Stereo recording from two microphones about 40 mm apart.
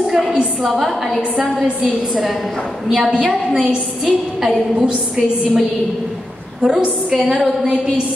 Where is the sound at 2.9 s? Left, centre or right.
Centre.